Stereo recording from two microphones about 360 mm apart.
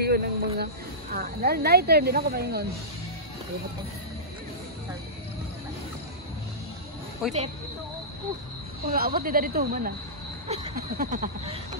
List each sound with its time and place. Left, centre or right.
0.0 s speech: right
7.2 s a woman's voice: centre
8.9 s speech: right